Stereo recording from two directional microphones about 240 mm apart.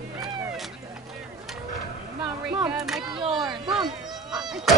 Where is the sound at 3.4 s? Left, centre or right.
Centre.